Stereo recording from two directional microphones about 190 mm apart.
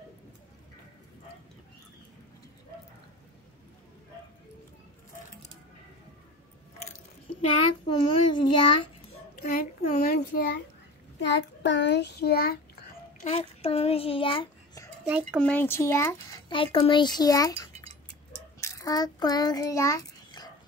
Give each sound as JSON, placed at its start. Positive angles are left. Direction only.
{"t": 7.9, "sound": "a child's voice", "side_deg": 25}
{"t": 9.3, "sound": "a child's voice", "side_deg": 50}
{"t": 11.1, "sound": "a child's voice", "side_deg": 70}
{"t": 13.2, "sound": "a child's voice", "side_deg": 35}
{"t": 15.3, "sound": "speech", "side_deg": 10}
{"t": 16.4, "sound": "a child's voice", "side_deg": 25}